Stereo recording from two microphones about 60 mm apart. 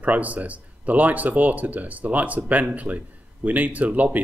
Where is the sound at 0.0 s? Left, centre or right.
Right.